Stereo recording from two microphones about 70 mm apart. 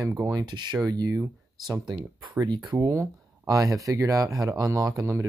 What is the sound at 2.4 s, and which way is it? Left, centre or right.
Speech, right.